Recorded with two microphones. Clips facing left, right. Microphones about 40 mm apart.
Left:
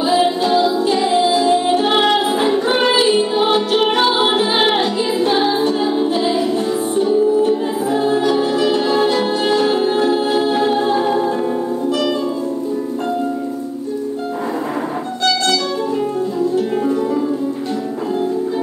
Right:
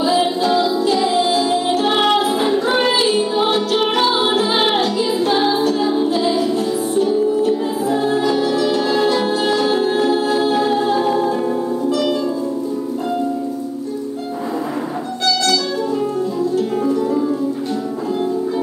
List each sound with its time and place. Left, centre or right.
0.0 s music: left